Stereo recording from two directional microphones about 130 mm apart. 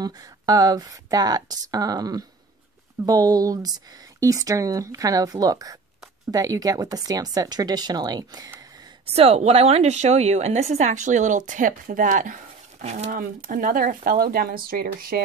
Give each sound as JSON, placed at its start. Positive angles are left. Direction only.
{"t": 0.0, "sound": "speech", "side_deg": -30}
{"t": 9.0, "sound": "a woman's voice", "side_deg": -50}
{"t": 12.8, "sound": "speech", "side_deg": -65}